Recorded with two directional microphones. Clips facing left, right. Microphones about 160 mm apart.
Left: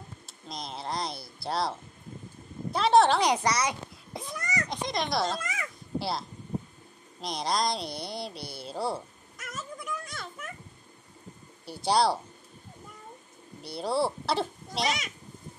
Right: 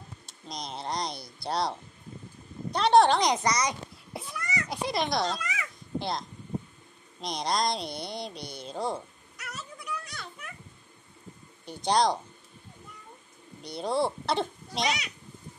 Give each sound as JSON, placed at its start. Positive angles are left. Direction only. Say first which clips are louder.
{"t": 0.3, "sound": "a woman's voice", "louder": "right 1 dB", "side_deg": 0}
{"t": 4.3, "sound": "a sound", "louder": "left 1 dB", "side_deg": 45}
{"t": 4.6, "sound": "speech", "louder": "right 4 dB", "side_deg": -5}
{"t": 5.4, "sound": "babbling", "louder": "even", "side_deg": 45}
{"t": 5.9, "sound": "speech", "louder": "even", "side_deg": 5}
{"t": 9.4, "sound": "a sound", "louder": "left 3 dB", "side_deg": 45}
{"t": 11.6, "sound": "speech", "louder": "even", "side_deg": 5}
{"t": 13.6, "sound": "speech", "louder": "even", "side_deg": 5}